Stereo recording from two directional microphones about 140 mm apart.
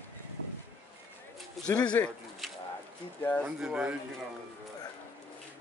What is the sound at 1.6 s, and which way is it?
Speech, 10° left (ahead or behind).